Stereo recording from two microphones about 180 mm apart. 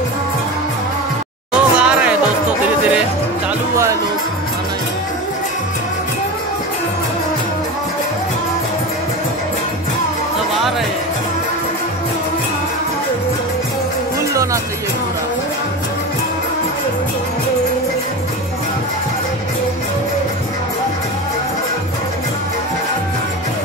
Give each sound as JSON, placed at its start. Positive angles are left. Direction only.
{"t": 1.5, "sound": "a sound", "side_deg": -5}
{"t": 3.7, "sound": "music", "side_deg": -15}
{"t": 14.3, "sound": "music", "side_deg": -15}